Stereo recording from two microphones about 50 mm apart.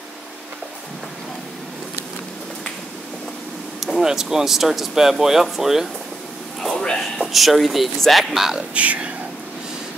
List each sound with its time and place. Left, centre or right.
3.8 s speech: centre
6.7 s a sound: centre
7.2 s speech: centre
8.7 s speech: right